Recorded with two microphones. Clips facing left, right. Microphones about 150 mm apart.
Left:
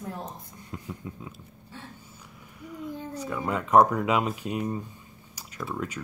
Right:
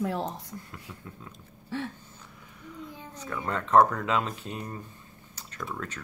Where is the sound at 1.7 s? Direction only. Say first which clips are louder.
Right 12 dB; 75° right (ahead or behind).